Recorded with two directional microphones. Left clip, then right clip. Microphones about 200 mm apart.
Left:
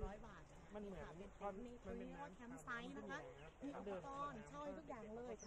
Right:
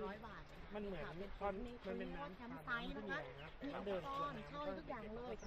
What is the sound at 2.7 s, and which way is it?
Speech, 30° right (ahead or behind).